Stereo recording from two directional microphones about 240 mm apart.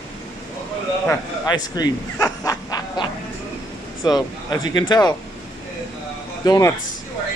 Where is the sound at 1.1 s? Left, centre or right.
Centre.